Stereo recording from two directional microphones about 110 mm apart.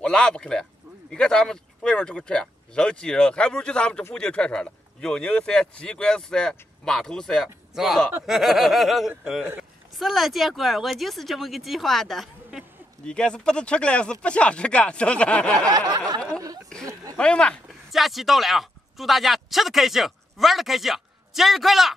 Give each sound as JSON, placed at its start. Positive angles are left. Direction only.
{"t": 0.0, "sound": "a man's voice", "side_deg": 5}
{"t": 15.7, "sound": "snicker", "side_deg": -35}
{"t": 16.8, "sound": "a sound", "side_deg": -35}
{"t": 17.2, "sound": "speech", "side_deg": 10}
{"t": 17.9, "sound": "speech", "side_deg": 0}